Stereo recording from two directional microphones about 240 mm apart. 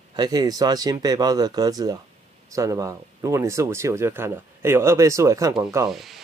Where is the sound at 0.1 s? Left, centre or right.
Centre.